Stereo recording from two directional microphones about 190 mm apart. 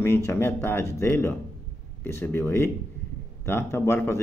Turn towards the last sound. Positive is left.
turn(degrees=15)  # may be behind; listen again after turning